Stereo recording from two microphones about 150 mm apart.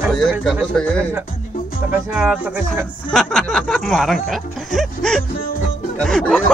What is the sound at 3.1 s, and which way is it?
Speech, 5° left (ahead or behind).